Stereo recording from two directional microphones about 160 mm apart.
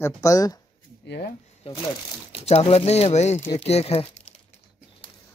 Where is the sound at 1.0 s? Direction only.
90° left.